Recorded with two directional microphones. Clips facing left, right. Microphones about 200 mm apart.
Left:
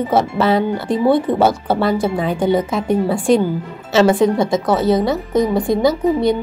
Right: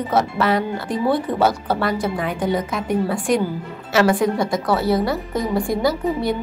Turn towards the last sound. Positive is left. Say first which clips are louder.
# left 5 dB
turn(degrees=20)  # may be behind; listen again after turning